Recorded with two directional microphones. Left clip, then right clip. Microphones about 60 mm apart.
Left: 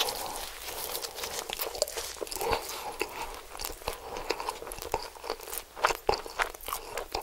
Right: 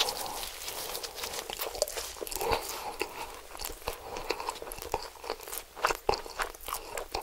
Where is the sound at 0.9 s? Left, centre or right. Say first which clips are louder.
Left 1 dB; centre.